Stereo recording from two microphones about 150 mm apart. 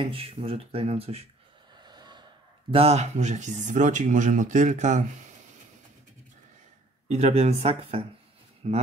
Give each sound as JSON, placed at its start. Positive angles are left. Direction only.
{"t": 0.0, "sound": "speech", "side_deg": -35}
{"t": 1.8, "sound": "a sound", "side_deg": -30}
{"t": 2.7, "sound": "speech", "side_deg": -40}
{"t": 7.1, "sound": "speech", "side_deg": -45}